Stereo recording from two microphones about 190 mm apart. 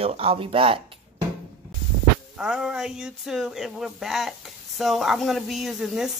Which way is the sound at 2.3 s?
5° right (ahead or behind).